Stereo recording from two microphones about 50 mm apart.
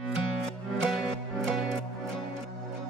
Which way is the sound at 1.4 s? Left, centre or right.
Centre.